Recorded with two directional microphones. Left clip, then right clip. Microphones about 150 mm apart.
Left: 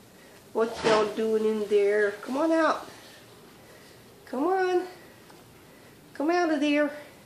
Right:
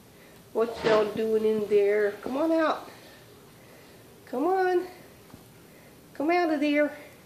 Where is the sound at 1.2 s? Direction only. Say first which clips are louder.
Right 1 dB; 5° right (ahead or behind).